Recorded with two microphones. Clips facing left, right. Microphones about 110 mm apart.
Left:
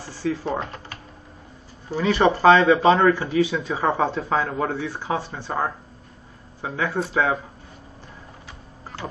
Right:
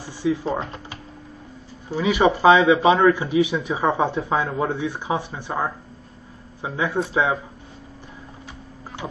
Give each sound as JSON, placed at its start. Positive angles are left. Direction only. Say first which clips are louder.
{"t": 0.0, "sound": "typewriter", "louder": "right 3 dB", "side_deg": -15}
{"t": 1.9, "sound": "a man's voice", "louder": "even", "side_deg": -10}